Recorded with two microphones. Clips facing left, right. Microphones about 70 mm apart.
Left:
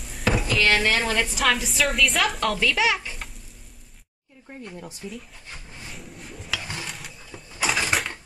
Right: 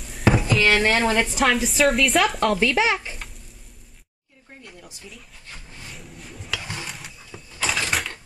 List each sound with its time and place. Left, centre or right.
0.0 s a sound: centre
0.8 s a woman's voice: centre
1.3 s a woman's voice: centre
2.8 s a woman's voice: right
4.6 s speech: left
5.9 s a sound: centre